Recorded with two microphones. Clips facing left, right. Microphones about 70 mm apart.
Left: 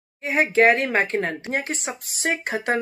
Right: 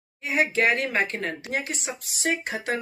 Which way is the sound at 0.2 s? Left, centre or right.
Left.